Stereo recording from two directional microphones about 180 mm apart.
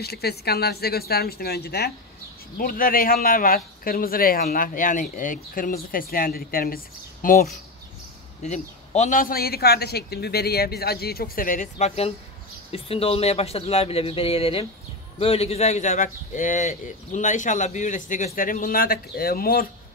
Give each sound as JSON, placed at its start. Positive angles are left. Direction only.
{"t": 0.0, "sound": "a man's voice", "side_deg": 60}
{"t": 8.4, "sound": "a man's voice", "side_deg": 40}